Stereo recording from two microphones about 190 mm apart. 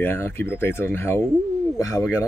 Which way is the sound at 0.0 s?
10° left (ahead or behind).